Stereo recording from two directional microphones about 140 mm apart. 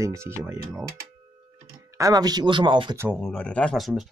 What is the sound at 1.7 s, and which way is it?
Speech, 25° right (ahead or behind).